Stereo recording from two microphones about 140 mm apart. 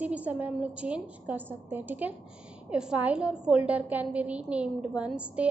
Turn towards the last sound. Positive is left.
turn(degrees=-10)  # may be behind; listen again after turning